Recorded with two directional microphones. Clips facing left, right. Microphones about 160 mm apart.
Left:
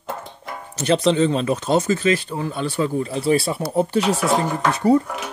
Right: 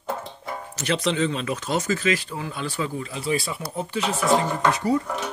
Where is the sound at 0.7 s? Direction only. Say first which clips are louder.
Left 7 dB; 30° left (ahead or behind).